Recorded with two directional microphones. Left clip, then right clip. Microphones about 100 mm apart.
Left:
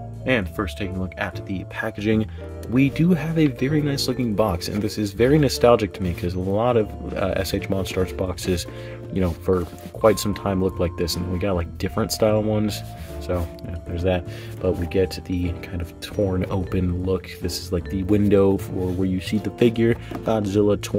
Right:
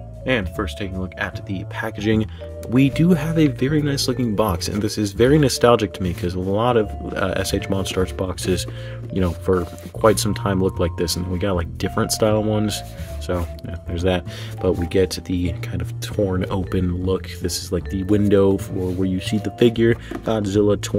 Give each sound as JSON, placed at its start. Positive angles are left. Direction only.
{"t": 0.2, "sound": "speech", "side_deg": -10}
{"t": 2.7, "sound": "speech", "side_deg": -35}
{"t": 13.9, "sound": "speech", "side_deg": -50}
{"t": 16.3, "sound": "speech", "side_deg": -30}